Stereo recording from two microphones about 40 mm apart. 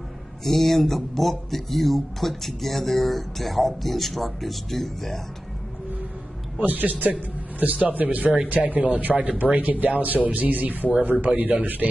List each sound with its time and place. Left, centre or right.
0.4 s speech: centre
6.6 s speech: right